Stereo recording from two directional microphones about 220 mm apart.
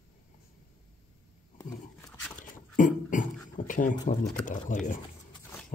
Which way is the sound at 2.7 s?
35° left (ahead or behind).